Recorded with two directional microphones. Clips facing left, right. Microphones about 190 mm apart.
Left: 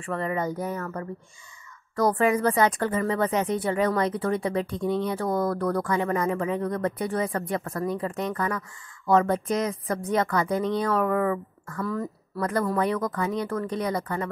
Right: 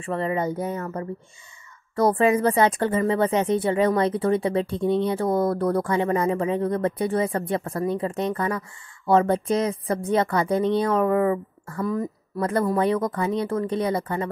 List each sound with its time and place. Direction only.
0.0 s speech: 20° right (ahead or behind)
11.8 s speech: 15° right (ahead or behind)
12.4 s speech: 25° right (ahead or behind)